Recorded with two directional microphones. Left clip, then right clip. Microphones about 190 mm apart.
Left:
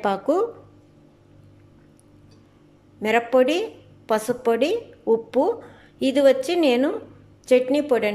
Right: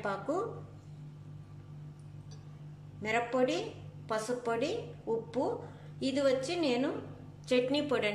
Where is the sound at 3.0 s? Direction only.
40° left (ahead or behind).